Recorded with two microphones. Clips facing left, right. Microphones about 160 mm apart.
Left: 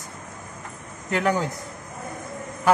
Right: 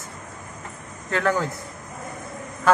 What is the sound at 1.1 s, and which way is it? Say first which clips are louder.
Speech: even; 15° left (ahead or behind).